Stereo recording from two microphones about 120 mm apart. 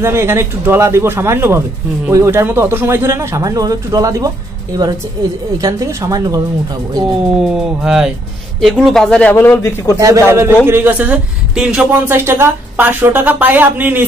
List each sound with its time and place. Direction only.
0.0 s speech: 20° right (ahead or behind)
5.6 s speech: 30° right (ahead or behind)
7.3 s a woman's voice: 5° right (ahead or behind)
9.3 s a man's voice: 20° left (ahead or behind)
9.9 s a woman's voice: 25° right (ahead or behind); by 12.0 s 10° right (ahead or behind)
12.1 s a woman's voice: 20° right (ahead or behind)